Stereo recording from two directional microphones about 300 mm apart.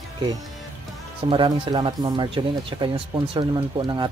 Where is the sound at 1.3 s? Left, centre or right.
Centre.